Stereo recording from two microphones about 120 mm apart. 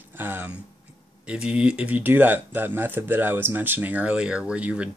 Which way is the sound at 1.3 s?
10° right (ahead or behind).